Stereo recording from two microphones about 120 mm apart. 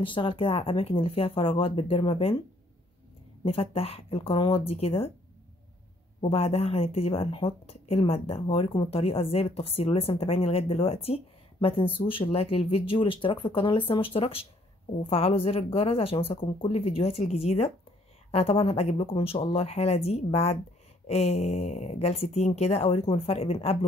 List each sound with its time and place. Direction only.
0.0 s speech: 45° left (ahead or behind)
3.4 s speech: 50° left (ahead or behind)
6.2 s speech: 55° left (ahead or behind)